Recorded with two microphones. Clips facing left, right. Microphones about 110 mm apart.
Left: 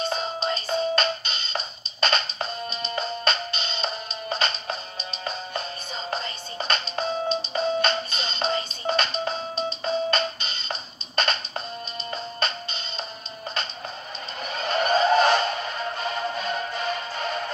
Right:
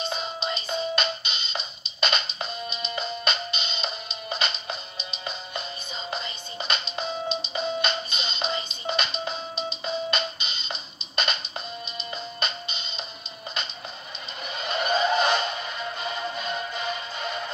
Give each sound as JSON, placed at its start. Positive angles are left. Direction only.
{"t": 0.0, "sound": "music", "side_deg": 40}
{"t": 6.0, "sound": "music", "side_deg": 40}
{"t": 14.4, "sound": "music", "side_deg": 40}